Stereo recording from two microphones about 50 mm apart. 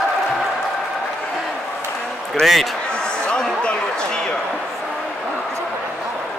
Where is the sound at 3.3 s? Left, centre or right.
Left.